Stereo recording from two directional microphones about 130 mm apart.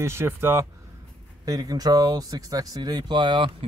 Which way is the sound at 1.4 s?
30° right (ahead or behind).